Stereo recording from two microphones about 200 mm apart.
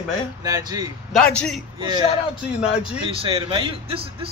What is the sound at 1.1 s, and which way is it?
Speech, 5° left (ahead or behind).